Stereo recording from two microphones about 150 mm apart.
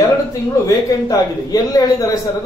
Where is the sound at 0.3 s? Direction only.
25° left (ahead or behind).